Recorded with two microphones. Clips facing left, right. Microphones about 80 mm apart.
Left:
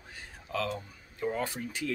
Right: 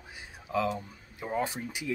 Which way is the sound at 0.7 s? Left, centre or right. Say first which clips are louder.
Right 2 dB; centre.